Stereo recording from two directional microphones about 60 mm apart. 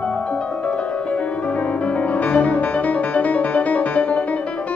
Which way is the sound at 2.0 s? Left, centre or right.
Left.